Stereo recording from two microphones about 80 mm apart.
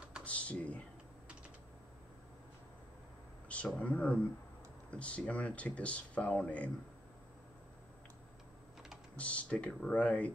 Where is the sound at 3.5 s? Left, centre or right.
Centre.